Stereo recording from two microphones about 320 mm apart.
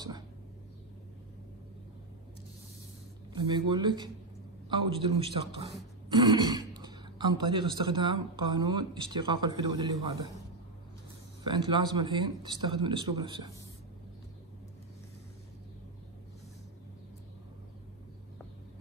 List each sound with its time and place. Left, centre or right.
3.3 s speech: centre
11.4 s speech: centre